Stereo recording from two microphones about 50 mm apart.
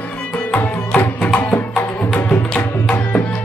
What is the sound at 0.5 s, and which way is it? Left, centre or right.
Music, left.